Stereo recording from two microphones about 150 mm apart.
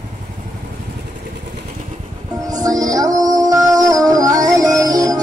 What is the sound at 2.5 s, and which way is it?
Music, 25° right (ahead or behind).